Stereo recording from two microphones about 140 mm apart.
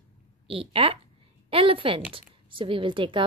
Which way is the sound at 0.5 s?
40° right (ahead or behind).